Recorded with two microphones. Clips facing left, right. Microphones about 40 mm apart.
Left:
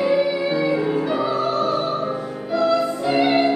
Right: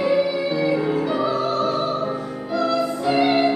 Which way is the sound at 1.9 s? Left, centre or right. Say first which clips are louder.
Even; centre.